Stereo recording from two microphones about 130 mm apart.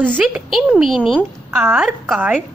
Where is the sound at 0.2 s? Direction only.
5° right (ahead or behind).